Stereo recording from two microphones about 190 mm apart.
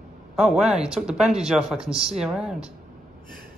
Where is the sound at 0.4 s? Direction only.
5° right (ahead or behind).